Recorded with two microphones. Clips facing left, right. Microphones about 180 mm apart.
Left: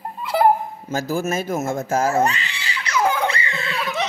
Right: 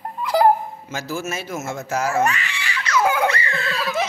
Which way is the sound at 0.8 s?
50° left (ahead or behind).